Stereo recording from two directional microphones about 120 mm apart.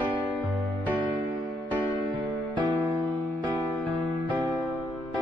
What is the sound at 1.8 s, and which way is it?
Music, 40° right (ahead or behind).